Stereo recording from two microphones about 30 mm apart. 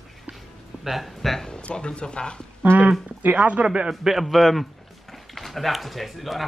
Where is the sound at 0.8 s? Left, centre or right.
Centre.